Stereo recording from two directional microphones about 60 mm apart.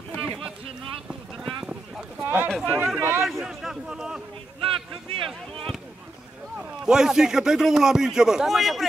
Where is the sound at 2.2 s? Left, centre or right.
Right.